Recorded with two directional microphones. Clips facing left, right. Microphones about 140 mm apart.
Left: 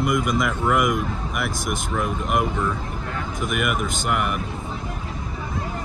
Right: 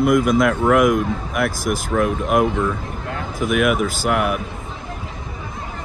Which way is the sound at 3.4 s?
Centre (ahead or behind).